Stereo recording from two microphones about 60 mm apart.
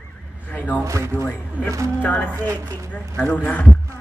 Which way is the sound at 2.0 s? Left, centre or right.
Left.